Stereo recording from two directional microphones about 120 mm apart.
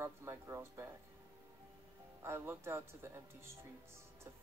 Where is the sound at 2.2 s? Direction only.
20° right (ahead or behind).